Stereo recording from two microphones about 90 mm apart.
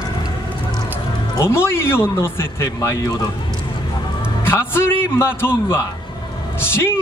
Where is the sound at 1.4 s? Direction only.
30° left (ahead or behind).